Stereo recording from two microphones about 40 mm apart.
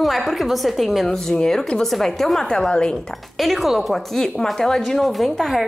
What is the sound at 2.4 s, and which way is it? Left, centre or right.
Speech, centre.